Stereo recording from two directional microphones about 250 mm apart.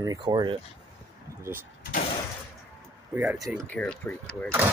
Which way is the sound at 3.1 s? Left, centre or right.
Centre.